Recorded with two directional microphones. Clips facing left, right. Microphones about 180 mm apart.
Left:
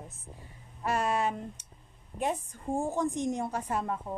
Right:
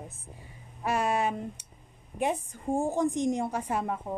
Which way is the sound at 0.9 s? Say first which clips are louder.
Right 1 dB; 10° right (ahead or behind).